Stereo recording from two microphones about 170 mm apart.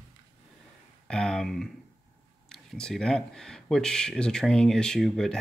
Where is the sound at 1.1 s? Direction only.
5° left (ahead or behind).